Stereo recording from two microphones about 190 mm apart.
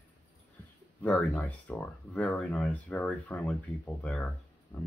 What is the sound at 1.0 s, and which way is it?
Speech, 10° left (ahead or behind).